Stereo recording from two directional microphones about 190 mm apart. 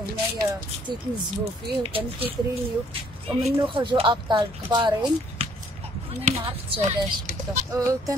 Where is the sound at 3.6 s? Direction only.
25° right (ahead or behind).